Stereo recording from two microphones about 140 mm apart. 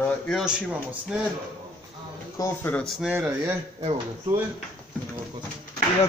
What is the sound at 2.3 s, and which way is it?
Speech, 20° left (ahead or behind).